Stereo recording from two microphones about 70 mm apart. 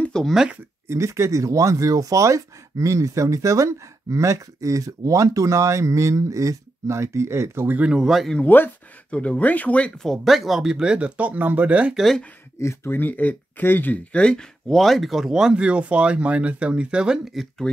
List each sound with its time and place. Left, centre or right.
0.3 s speech: centre
0.8 s speech: right
8.0 s speech: centre
8.4 s speech: left
9.9 s speech: centre; by 11.9 s right
11.9 s speech: centre
12.5 s speech: left
14.1 s speech: centre
17.3 s speech: centre